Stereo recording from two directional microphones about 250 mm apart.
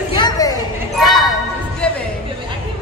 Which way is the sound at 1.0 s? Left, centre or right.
Centre.